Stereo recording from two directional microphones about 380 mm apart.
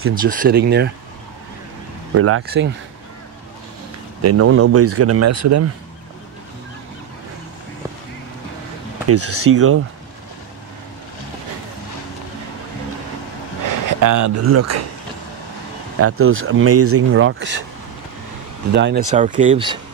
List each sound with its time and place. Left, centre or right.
0.1 s speech: right
2.1 s speech: right
4.2 s speech: right
9.1 s speech: right
13.7 s a sound: right
14.3 s speech: right
16.0 s speech: right
18.7 s speech: right